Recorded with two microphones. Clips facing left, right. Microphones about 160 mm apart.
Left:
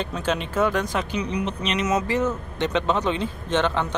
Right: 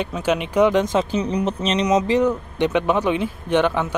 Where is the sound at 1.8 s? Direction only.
20° right (ahead or behind).